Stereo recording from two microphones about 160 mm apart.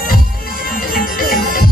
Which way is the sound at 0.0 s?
65° left (ahead or behind).